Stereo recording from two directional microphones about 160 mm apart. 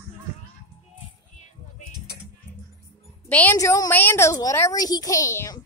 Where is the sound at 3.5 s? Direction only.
20° left (ahead or behind).